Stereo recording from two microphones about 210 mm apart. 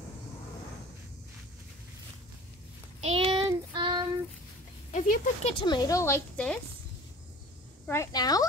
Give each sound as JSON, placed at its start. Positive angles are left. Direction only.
{"t": 3.0, "sound": "child singing", "side_deg": -25}
{"t": 4.9, "sound": "speech", "side_deg": 40}
{"t": 5.5, "sound": "speech", "side_deg": 20}
{"t": 7.8, "sound": "speech", "side_deg": 15}